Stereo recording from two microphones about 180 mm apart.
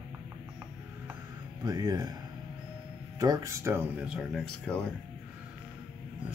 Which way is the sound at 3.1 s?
20° right (ahead or behind).